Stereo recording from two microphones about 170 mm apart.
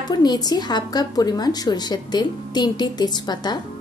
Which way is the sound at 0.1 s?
25° left (ahead or behind).